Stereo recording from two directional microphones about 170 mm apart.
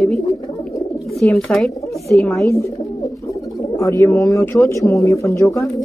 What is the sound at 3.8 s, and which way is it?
Speech, 15° left (ahead or behind).